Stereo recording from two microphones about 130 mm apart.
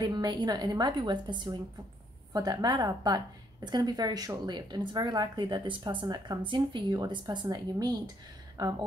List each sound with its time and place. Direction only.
0.0 s a woman's voice: 35° right (ahead or behind)